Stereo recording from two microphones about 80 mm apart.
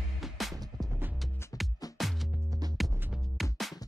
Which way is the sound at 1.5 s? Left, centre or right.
Left.